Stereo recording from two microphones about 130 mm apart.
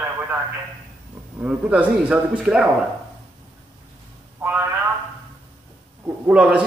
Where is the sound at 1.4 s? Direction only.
10° right (ahead or behind).